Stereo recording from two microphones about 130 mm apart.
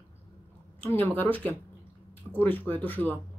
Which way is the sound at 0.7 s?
15° left (ahead or behind).